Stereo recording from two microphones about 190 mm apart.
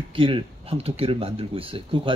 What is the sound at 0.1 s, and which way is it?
Speech, 25° right (ahead or behind).